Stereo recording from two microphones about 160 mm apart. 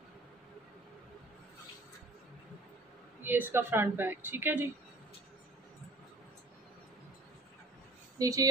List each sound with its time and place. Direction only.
3.3 s speech: 10° right (ahead or behind)
8.2 s speech: 20° right (ahead or behind)